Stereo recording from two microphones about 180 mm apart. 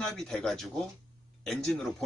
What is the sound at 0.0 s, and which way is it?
Speech, 5° left (ahead or behind).